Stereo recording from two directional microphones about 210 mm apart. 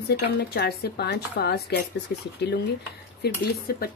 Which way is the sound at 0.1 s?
50° left (ahead or behind).